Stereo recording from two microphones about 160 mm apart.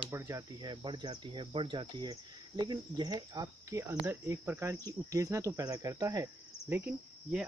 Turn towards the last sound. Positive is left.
turn(degrees=-10)  # may be behind; listen again after turning